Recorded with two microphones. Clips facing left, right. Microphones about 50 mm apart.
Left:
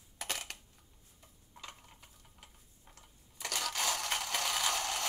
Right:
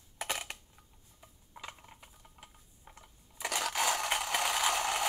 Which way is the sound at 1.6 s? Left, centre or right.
Centre.